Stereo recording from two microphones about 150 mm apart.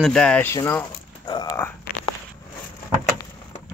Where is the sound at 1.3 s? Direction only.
25° left (ahead or behind).